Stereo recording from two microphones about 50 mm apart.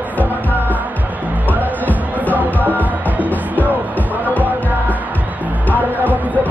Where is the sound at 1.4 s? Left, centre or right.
Left.